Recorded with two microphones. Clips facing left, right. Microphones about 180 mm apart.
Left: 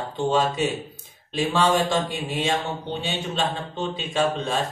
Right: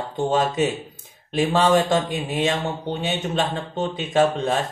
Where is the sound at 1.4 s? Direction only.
50° right (ahead or behind).